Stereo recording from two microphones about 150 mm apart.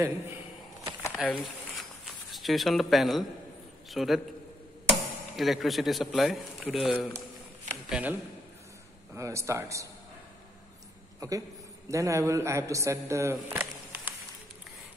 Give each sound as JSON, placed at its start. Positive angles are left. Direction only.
{"t": 1.2, "sound": "a sound", "side_deg": 5}
{"t": 2.3, "sound": "a man's voice", "side_deg": 0}
{"t": 11.1, "sound": "a woman's voice", "side_deg": -20}